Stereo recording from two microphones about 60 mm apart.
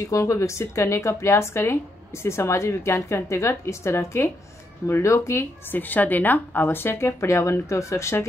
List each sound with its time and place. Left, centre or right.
0.0 s a woman's voice: left
5.7 s a woman's voice: left